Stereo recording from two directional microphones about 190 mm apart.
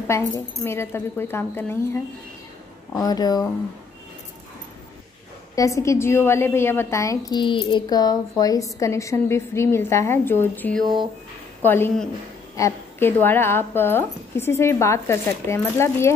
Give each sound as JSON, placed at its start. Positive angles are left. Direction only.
{"t": 0.1, "sound": "speech", "side_deg": 15}
{"t": 3.0, "sound": "speech", "side_deg": 20}
{"t": 5.6, "sound": "speech", "side_deg": 15}